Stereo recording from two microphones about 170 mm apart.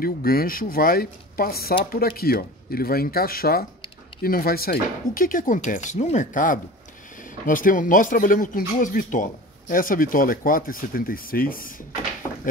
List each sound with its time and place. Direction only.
0.0 s speech: 60° left (ahead or behind)